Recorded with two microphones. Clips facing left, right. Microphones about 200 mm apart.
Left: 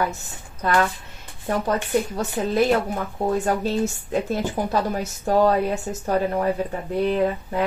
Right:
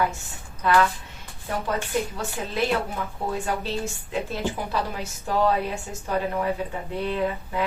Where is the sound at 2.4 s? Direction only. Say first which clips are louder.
Left 6 dB; 40° left (ahead or behind).